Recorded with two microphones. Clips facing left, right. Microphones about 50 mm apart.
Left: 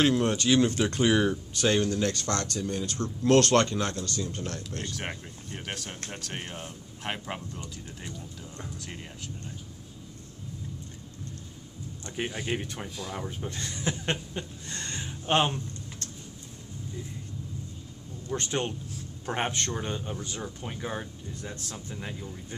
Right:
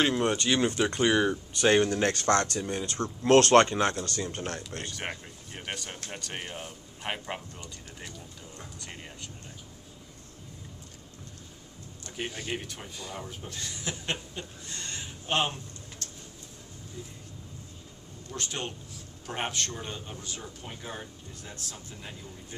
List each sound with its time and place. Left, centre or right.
0.1 s speech: centre
1.6 s speech: right
4.9 s speech: centre
8.7 s speech: centre
12.2 s speech: centre
12.9 s speech: centre
13.2 s speech: left
13.6 s a man's voice: left
14.7 s a sound: left
18.3 s a man's voice: left
19.8 s speech: centre
21.4 s a man's voice: left